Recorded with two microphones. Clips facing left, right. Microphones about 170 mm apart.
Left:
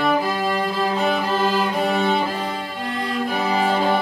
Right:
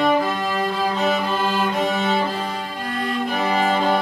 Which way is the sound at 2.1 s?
20° left (ahead or behind).